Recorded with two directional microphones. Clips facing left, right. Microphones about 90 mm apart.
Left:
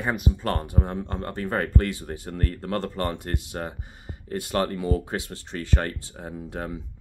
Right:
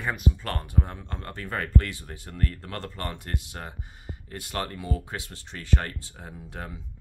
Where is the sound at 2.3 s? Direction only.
35° left (ahead or behind).